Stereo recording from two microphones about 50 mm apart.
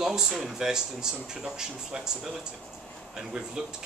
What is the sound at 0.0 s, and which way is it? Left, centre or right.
Speech, centre.